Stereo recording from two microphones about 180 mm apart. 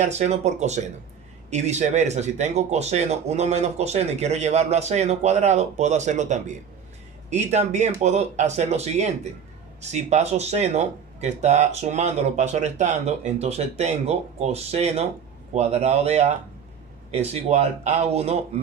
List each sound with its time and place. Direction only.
0.0 s speech: 40° right (ahead or behind)